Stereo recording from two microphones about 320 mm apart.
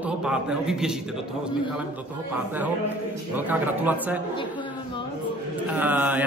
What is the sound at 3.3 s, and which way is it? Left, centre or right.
Speech, centre.